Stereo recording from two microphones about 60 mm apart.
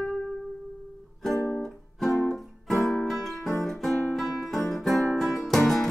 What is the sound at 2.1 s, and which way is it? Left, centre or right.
Music, left.